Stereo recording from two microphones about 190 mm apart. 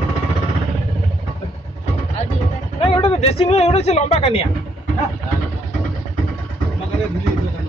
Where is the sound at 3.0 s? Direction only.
30° left (ahead or behind).